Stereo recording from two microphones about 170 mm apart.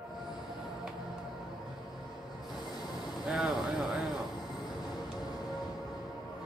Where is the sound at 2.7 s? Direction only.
25° left (ahead or behind).